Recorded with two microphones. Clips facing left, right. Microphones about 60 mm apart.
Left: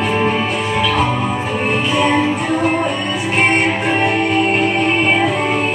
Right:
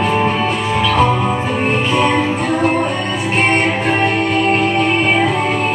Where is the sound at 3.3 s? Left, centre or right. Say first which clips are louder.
Even; centre.